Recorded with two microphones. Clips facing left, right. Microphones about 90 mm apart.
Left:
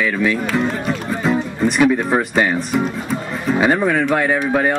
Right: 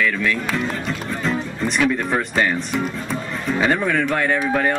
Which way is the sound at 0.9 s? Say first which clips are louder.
Left 5 dB; 10° left (ahead or behind).